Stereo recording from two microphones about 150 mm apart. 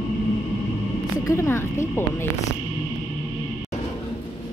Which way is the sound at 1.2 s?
15° left (ahead or behind).